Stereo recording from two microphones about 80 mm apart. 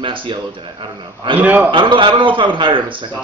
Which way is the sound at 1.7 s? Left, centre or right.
Right.